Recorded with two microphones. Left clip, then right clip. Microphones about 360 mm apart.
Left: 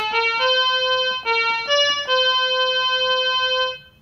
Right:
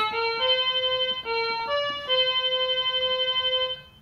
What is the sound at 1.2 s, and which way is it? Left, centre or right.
Music, left.